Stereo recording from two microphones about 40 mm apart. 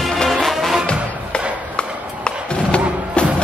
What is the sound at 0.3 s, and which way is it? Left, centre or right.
Music, centre.